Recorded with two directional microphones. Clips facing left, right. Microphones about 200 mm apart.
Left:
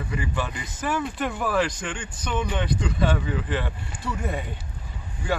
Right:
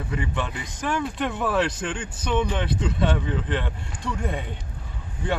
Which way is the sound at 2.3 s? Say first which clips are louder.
Right 2 dB; 5° left (ahead or behind).